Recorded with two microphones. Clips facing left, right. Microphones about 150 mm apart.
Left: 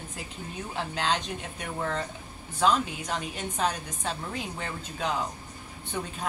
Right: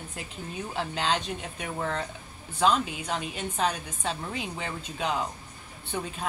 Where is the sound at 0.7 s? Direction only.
Centre (ahead or behind).